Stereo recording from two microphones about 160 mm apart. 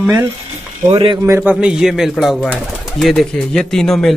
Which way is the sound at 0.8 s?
30° right (ahead or behind).